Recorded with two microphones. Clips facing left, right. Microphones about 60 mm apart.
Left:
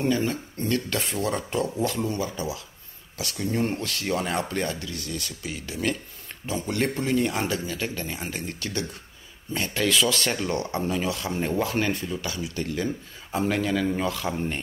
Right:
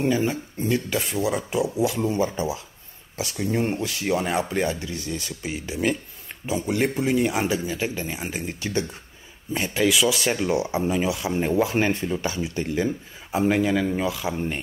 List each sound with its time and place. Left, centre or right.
0.0 s speech: centre
2.1 s speech: right; by 11.7 s centre
11.7 s speech: right; by 14.6 s centre